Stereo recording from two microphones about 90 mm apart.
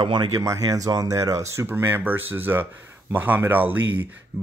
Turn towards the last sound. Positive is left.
turn(degrees=-20)  # may be behind; listen again after turning